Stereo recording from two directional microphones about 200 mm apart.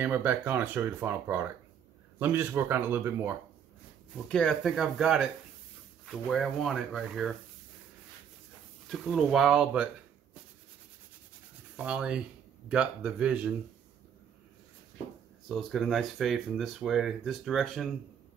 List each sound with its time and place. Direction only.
0.0 s speech: 10° right (ahead or behind)
4.3 s speech: 5° left (ahead or behind)
8.8 s speech: centre (ahead or behind)
11.7 s speech: 5° right (ahead or behind)
15.4 s speech: centre (ahead or behind)